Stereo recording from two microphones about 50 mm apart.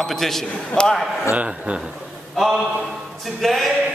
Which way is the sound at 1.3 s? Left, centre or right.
Right.